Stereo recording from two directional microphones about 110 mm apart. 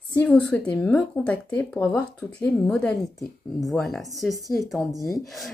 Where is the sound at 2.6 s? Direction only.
10° left (ahead or behind).